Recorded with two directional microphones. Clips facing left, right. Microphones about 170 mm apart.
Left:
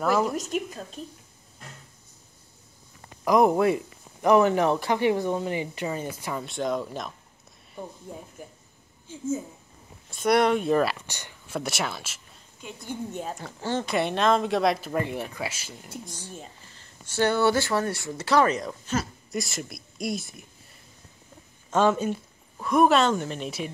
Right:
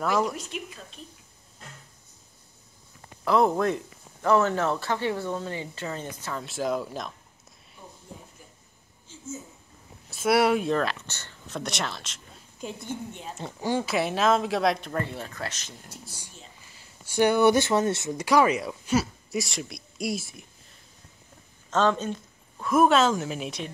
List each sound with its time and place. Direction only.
0.0 s speech: centre (ahead or behind)
0.4 s a woman's voice: 40° left (ahead or behind)
3.3 s speech: 15° left (ahead or behind)
6.4 s speech: centre (ahead or behind)
10.0 s speech: 5° right (ahead or behind)
10.7 s speech: 5° left (ahead or behind)
13.4 s speech: 15° right (ahead or behind); by 15.0 s centre (ahead or behind)
15.0 s speech: 15° left (ahead or behind)
16.6 s speech: 10° right (ahead or behind)
21.6 s a sound: 10° left (ahead or behind)
22.7 s speech: centre (ahead or behind)